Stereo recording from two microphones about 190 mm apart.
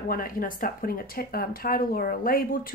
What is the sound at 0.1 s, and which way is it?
Speech, 50° left (ahead or behind).